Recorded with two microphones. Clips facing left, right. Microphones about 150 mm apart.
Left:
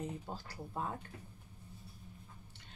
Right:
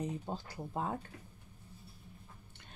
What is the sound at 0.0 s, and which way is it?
Speech, 20° right (ahead or behind).